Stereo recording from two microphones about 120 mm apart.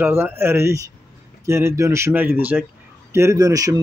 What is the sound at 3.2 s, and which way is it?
Speech, 25° right (ahead or behind).